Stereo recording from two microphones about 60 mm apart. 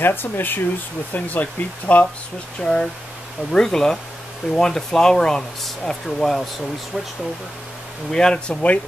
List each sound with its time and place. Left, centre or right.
0.0 s speech: left
1.1 s speech: left
2.6 s speech: centre
8.1 s speech: centre